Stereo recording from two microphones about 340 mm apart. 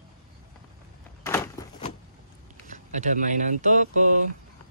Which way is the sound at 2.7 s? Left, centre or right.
Right.